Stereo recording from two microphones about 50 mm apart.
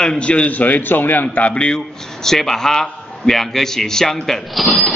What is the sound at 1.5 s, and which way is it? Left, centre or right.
Speech, left.